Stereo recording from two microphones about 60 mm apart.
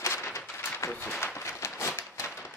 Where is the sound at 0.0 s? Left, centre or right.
Left.